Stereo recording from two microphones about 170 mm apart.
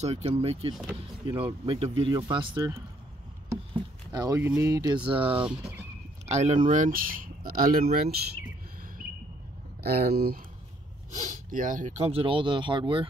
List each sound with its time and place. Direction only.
0.0 s speech: 35° right (ahead or behind)
4.1 s speech: 20° right (ahead or behind)
5.4 s speech: 5° right (ahead or behind)
6.2 s speech: 40° right (ahead or behind); by 8.2 s 60° right (ahead or behind)
9.8 s speech: 65° right (ahead or behind)
11.1 s speech: 50° right (ahead or behind); by 13.0 s 30° right (ahead or behind)